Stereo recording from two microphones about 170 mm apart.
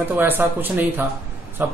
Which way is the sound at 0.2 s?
10° right (ahead or behind).